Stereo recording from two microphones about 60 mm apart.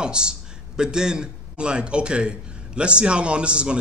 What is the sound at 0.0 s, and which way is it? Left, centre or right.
A man's voice, centre.